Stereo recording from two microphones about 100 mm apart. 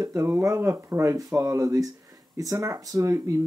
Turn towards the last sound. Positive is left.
turn(degrees=-30)  # may be behind; listen again after turning